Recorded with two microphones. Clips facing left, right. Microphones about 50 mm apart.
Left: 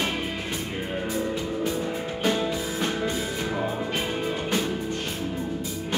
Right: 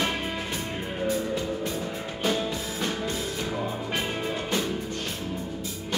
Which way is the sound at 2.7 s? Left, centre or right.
Left.